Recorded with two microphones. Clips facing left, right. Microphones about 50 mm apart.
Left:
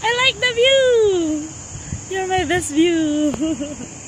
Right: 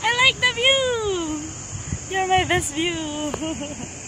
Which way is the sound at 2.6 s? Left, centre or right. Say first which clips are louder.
Left 8 dB; centre.